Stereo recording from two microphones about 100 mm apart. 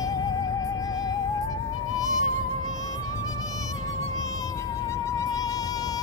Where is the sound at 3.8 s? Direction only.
35° left (ahead or behind).